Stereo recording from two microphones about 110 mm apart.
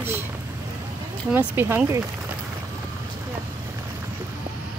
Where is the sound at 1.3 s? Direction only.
20° right (ahead or behind).